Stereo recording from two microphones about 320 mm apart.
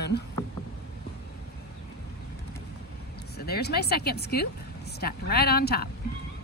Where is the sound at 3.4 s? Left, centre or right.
Left.